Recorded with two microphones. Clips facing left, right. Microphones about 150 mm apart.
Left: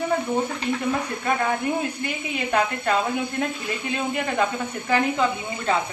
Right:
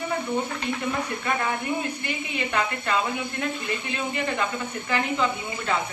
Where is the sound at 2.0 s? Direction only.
45° left (ahead or behind).